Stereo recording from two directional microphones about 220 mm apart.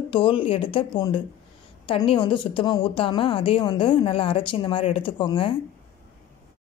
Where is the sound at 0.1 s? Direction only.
25° left (ahead or behind).